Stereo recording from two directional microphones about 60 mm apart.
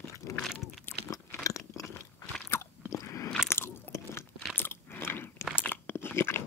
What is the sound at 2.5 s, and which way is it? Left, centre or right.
Biting, left.